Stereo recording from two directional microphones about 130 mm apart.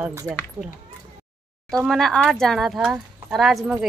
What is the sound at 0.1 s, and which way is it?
Speech, 20° right (ahead or behind).